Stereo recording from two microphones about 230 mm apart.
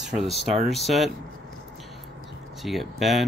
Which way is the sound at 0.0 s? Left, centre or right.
Centre.